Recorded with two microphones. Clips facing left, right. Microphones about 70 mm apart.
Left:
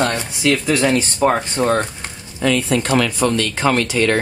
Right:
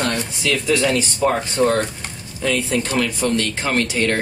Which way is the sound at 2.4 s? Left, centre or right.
Left.